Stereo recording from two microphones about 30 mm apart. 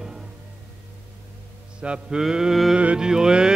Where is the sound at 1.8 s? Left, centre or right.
Right.